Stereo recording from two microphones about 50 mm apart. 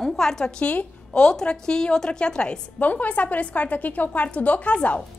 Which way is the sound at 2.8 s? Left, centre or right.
Left.